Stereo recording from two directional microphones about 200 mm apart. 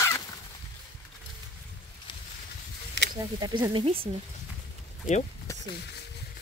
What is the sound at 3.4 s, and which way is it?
Speech, 20° right (ahead or behind).